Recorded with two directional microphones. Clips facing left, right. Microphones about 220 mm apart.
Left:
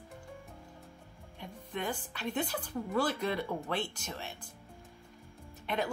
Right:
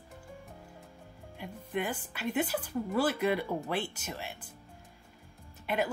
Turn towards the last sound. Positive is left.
turn(degrees=-5)  # may be behind; listen again after turning